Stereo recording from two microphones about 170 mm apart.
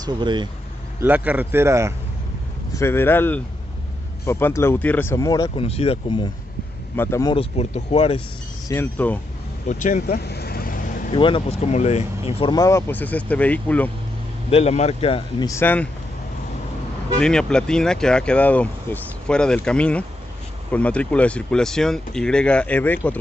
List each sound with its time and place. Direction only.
0.0 s speech: 25° right (ahead or behind)
1.0 s a man's voice: 10° right (ahead or behind)
2.7 s speech: 15° left (ahead or behind)
5.7 s speech: 35° left (ahead or behind)
7.0 s speech: 15° left (ahead or behind)
7.3 s speech: 35° left (ahead or behind)
8.6 s speech: 15° left (ahead or behind)
9.7 s vehicle: 50° left (ahead or behind)
11.1 s speech: 30° left (ahead or behind)
12.5 s speech: 15° left (ahead or behind)
14.5 s speech: 40° left (ahead or behind)
15.4 s speech: 15° left (ahead or behind)
17.2 s speech: 5° left (ahead or behind)